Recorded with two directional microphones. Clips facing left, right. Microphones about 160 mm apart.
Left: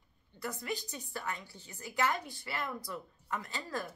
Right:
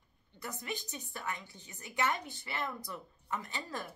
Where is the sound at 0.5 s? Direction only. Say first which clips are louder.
Left 3 dB; 20° right (ahead or behind).